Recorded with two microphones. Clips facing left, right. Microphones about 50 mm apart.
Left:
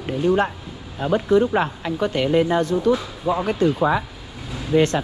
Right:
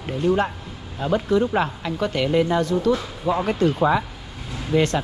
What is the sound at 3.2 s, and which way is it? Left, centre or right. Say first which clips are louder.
Speech: even; right.